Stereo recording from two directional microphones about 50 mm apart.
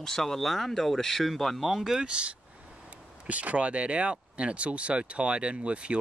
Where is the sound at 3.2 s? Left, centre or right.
Right.